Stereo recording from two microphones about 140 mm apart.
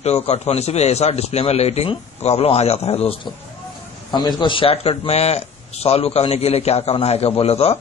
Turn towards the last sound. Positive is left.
turn(degrees=45)  # may be behind; listen again after turning